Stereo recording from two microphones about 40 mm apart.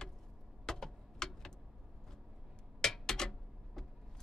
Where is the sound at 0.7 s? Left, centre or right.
Centre.